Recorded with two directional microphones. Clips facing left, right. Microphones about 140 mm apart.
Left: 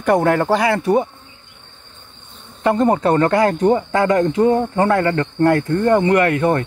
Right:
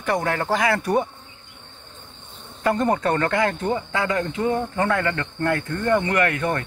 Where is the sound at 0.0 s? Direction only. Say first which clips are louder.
Left 8 dB; 45° left (ahead or behind); by 1.0 s 20° left (ahead or behind).